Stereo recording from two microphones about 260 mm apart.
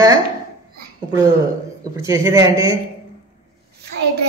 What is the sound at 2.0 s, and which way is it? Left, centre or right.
Speech, centre.